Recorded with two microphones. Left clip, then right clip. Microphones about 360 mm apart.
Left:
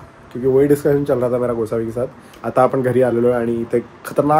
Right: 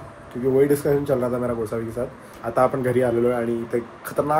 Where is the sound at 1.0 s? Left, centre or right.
Left.